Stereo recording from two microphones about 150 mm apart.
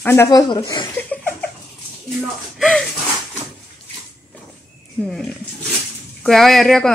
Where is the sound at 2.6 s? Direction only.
5° left (ahead or behind).